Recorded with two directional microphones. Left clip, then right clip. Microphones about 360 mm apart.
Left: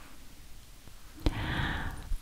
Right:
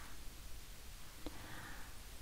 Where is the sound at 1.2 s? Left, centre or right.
Left.